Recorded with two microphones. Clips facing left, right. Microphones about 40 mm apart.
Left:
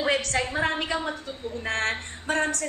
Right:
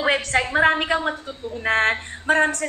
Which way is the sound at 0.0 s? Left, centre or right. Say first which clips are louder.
Right 4 dB; right.